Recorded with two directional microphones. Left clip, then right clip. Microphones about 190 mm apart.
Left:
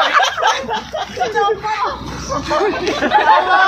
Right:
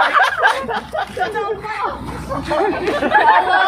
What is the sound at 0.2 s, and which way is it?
Chuckle, 25° left (ahead or behind).